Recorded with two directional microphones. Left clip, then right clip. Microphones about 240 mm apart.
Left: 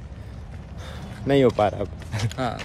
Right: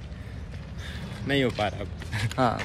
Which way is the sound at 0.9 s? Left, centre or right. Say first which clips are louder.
Left 6 dB; left.